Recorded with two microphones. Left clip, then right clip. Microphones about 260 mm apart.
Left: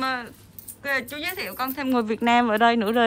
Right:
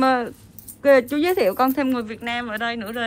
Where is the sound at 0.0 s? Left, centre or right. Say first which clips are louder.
Right 8 dB; centre.